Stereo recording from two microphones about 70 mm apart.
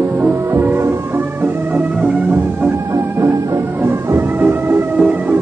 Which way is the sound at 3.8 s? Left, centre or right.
Right.